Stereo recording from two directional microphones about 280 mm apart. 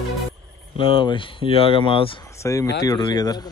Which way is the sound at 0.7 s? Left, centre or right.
Centre.